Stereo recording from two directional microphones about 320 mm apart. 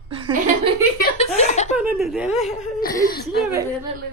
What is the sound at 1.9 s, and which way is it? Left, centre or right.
Speech, centre.